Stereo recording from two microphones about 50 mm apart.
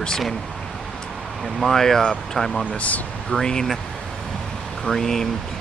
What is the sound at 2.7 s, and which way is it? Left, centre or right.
Speech, left.